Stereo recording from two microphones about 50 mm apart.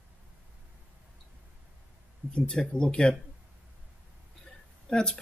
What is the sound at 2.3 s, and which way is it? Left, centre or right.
Speech, centre.